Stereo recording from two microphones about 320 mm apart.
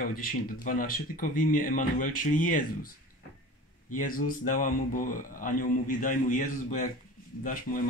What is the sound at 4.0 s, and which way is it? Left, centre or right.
Speech, left.